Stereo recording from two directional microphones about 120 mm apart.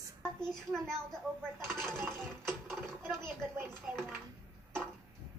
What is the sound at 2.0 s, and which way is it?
Music, 20° right (ahead or behind).